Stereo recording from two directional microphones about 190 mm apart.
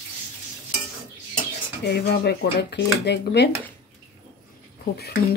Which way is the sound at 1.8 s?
55° left (ahead or behind).